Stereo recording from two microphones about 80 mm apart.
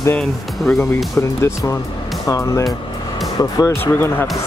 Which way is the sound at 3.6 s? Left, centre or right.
Left.